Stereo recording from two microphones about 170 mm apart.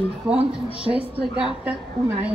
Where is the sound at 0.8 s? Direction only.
5° right (ahead or behind).